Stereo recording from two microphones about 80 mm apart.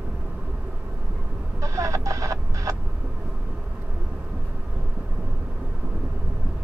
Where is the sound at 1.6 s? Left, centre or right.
Right.